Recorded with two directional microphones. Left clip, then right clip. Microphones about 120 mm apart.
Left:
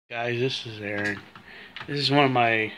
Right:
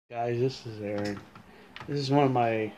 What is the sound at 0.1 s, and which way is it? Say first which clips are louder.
Speech: left 3 dB; 15° right (ahead or behind).